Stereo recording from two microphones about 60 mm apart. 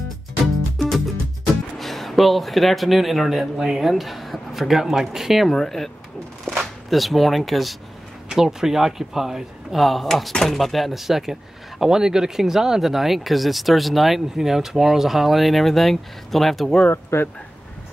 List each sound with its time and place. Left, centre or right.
0.7 s music: centre
1.8 s speech: centre
5.5 s speech: centre
17.1 s speech: left